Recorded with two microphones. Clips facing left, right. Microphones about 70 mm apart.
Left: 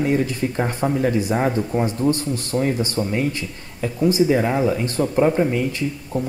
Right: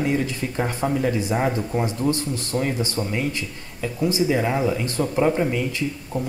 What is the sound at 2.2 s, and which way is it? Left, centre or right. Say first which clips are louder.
A man's voice: left 3 dB; left.